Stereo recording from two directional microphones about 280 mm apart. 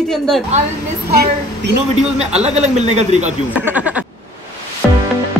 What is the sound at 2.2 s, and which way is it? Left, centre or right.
A man's voice, right.